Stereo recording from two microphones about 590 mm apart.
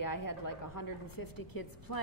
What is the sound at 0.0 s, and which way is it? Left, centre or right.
A woman's voice, left.